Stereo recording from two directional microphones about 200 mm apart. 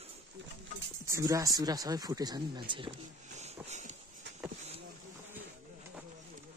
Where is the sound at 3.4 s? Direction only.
35° right (ahead or behind).